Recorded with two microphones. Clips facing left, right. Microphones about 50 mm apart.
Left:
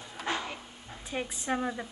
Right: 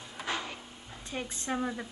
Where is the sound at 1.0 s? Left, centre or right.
Centre.